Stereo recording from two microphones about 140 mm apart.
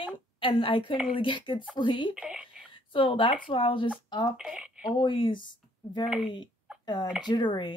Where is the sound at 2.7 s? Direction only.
35° left (ahead or behind).